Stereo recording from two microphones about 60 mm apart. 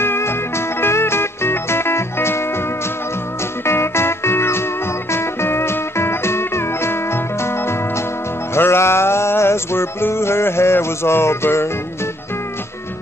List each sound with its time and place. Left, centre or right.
0.0 s music: left
3.6 s music: left